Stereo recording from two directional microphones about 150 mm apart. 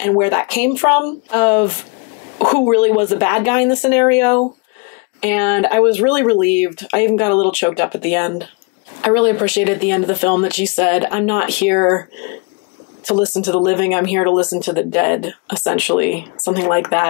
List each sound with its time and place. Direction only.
0.2 s speech: 20° left (ahead or behind)
13.4 s speech: 15° left (ahead or behind)